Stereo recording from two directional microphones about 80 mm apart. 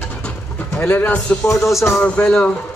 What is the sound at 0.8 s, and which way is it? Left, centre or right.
Speech, left.